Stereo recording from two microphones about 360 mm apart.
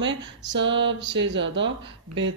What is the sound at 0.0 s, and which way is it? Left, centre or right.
Speech, right.